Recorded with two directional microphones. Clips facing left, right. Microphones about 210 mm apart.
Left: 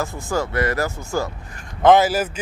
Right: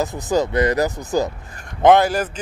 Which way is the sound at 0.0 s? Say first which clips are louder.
Right 4 dB; 20° right (ahead or behind).